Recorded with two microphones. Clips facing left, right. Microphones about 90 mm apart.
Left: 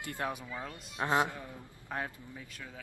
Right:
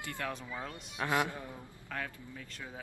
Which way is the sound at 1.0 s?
25° left (ahead or behind).